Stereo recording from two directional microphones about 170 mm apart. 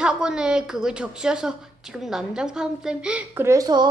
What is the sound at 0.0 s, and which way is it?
A woman's voice, 5° right (ahead or behind).